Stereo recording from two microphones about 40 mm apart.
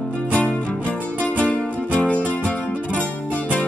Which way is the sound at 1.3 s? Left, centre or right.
Left.